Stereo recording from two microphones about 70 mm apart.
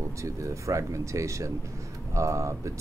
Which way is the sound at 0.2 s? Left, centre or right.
Right.